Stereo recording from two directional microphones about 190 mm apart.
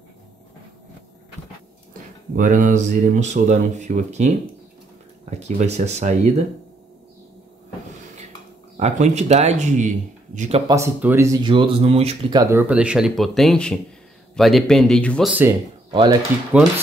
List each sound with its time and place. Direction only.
2.3 s speech: 45° right (ahead or behind)
8.7 s speech: 35° right (ahead or behind)
10.7 s speech: 10° right (ahead or behind)
11.4 s speech: 25° right (ahead or behind)
12.4 s speech: 15° right (ahead or behind); by 15.3 s 5° left (ahead or behind)
15.9 s speech: 25° right (ahead or behind)